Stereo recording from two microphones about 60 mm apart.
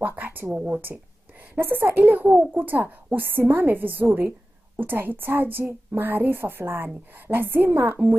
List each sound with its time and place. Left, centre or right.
0.0 s speech: right
0.5 s a woman's voice: centre
1.5 s a woman's voice: right
2.2 s a woman's voice: centre
2.5 s a woman's voice: right